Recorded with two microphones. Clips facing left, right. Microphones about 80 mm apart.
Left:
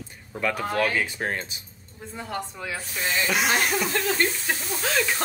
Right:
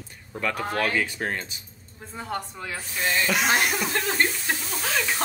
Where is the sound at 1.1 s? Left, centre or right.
Left.